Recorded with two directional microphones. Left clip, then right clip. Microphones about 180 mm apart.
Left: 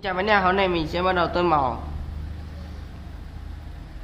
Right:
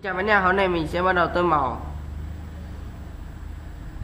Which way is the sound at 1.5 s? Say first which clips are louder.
Even; 25° left (ahead or behind).